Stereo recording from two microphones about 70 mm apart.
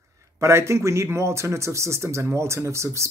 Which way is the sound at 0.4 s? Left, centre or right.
Right.